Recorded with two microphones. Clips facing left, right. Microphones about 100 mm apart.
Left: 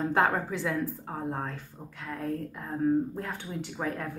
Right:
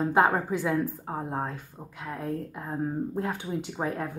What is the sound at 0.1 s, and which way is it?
A woman's voice, 15° right (ahead or behind).